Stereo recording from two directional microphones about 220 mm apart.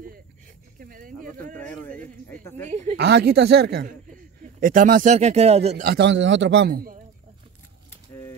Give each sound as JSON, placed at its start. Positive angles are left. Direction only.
{"t": 0.7, "sound": "a sound", "side_deg": -40}
{"t": 1.6, "sound": "a man's voice", "side_deg": 5}
{"t": 1.9, "sound": "speech", "side_deg": -40}
{"t": 2.2, "sound": "a woman's voice", "side_deg": 10}
{"t": 2.7, "sound": "speech", "side_deg": -30}
{"t": 3.0, "sound": "a man's voice", "side_deg": -50}
{"t": 5.9, "sound": "a man's voice", "side_deg": -50}